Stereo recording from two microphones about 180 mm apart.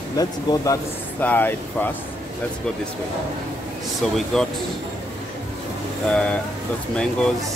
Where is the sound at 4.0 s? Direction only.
Centre (ahead or behind).